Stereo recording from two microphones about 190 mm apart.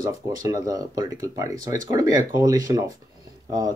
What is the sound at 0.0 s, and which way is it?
Speech, 20° right (ahead or behind).